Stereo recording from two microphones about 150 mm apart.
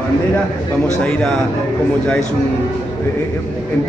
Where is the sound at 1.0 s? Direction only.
10° left (ahead or behind).